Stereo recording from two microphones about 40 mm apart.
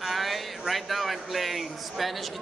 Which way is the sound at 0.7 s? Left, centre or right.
Centre.